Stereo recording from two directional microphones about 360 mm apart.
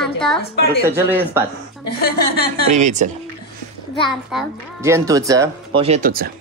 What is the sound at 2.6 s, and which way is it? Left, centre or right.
Speech, centre.